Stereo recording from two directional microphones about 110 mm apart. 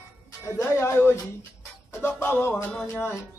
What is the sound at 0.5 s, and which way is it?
Speech, 25° left (ahead or behind).